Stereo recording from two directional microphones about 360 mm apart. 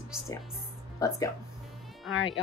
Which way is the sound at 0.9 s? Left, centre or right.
Centre.